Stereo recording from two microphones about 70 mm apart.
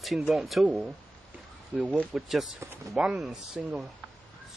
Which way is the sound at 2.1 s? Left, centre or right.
Centre.